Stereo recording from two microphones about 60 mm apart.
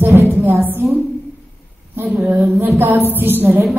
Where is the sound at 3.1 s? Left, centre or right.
Right.